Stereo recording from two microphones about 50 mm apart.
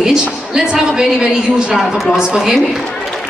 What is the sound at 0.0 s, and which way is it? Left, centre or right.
A woman's voice, centre.